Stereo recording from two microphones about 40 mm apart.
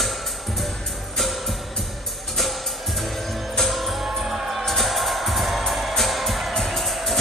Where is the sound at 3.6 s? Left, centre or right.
Centre.